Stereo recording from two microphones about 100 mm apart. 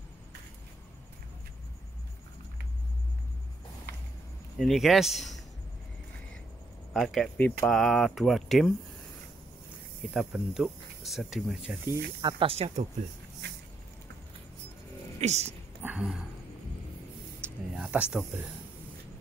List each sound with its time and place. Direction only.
4.6 s speech: centre (ahead or behind)
6.9 s speech: centre (ahead or behind)
7.3 s speech: 15° left (ahead or behind)
7.7 s speech: centre (ahead or behind)
10.1 s speech: 5° right (ahead or behind)
12.2 s speech: 45° right (ahead or behind)
12.4 s speech: 90° right
15.1 s speech: 90° right
15.8 s a sound: 15° right (ahead or behind)
17.4 s a sound: 25° right (ahead or behind)
17.7 s a sound: 10° right (ahead or behind)